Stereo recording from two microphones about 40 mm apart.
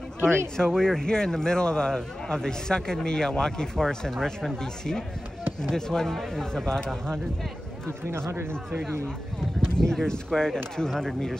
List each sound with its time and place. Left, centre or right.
0.6 s speech: centre
8.2 s speech: right
9.6 s speech: centre